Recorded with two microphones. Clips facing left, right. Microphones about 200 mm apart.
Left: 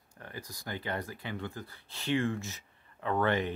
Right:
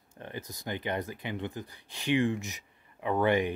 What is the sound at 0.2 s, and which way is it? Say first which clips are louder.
Speech: right 4 dB; 20° right (ahead or behind).